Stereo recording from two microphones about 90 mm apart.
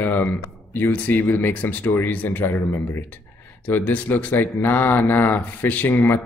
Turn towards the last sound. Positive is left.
turn(degrees=25)  # may be behind; listen again after turning